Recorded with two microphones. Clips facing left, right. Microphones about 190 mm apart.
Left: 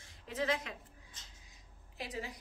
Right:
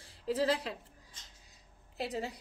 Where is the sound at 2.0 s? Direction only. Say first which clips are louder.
Right 6 dB; 30° right (ahead or behind).